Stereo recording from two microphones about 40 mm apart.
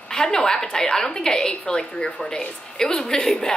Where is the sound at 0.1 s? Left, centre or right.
Centre.